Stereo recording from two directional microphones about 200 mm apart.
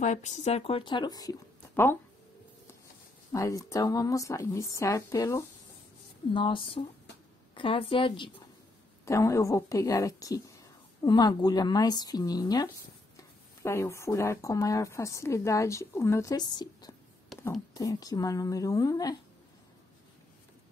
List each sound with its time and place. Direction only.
0.0 s speech: 35° left (ahead or behind); by 1.3 s 20° left (ahead or behind)
3.3 s a woman's voice: 15° left (ahead or behind)
9.0 s a woman's voice: 15° left (ahead or behind)